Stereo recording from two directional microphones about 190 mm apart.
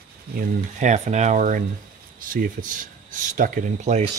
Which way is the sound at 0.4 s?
40° right (ahead or behind).